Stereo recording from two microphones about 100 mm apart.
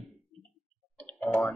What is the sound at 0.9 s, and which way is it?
Tick, 15° left (ahead or behind).